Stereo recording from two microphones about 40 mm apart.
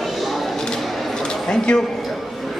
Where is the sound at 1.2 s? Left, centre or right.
Left.